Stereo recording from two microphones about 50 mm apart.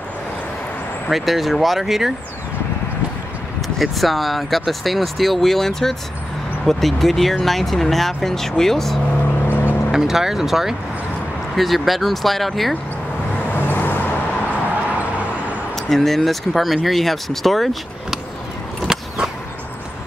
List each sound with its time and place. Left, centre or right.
1.0 s speech: centre
3.6 s speech: centre
9.5 s vehicle: left
9.8 s speech: centre
13.5 s vehicle: left
15.7 s speech: centre
18.9 s a sound: centre